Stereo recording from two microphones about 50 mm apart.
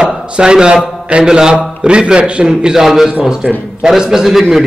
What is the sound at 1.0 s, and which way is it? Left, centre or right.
A man's voice, centre.